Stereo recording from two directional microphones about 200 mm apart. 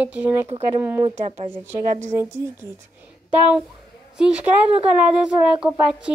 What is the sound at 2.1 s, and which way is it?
Speech, 15° right (ahead or behind).